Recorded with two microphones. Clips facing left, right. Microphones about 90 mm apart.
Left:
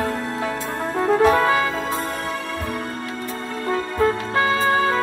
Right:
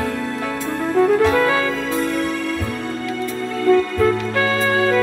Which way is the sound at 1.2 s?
30° left (ahead or behind).